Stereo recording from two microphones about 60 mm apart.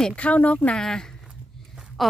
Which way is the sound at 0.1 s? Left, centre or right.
Left.